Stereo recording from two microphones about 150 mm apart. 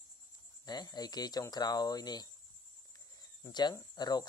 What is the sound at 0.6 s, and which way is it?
Speech, 25° left (ahead or behind).